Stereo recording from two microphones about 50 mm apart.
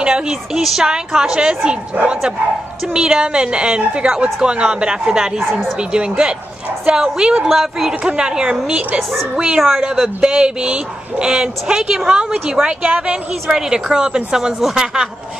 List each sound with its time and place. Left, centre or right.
0.0 s speech: centre
2.9 s speech: centre
5.4 s speech: centre
5.8 s speech: centre
9.6 s speech: centre